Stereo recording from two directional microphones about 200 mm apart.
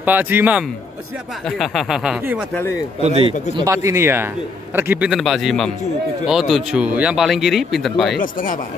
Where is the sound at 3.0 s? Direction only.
30° right (ahead or behind).